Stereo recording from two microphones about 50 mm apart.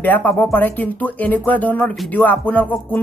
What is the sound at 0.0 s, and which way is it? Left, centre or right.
Speech, left.